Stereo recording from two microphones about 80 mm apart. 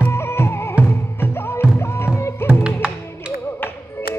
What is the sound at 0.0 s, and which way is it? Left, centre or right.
Music, left.